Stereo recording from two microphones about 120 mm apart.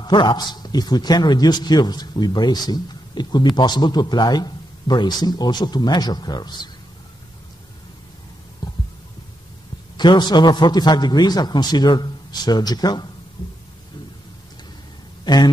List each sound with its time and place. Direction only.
0.0 s a man's voice: 40° left (ahead or behind)
8.6 s heart sounds: 35° left (ahead or behind)
9.9 s a man's voice: 40° left (ahead or behind)
15.2 s speech: 35° left (ahead or behind)